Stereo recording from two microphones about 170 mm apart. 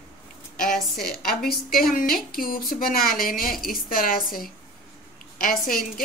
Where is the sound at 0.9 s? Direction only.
60° left (ahead or behind).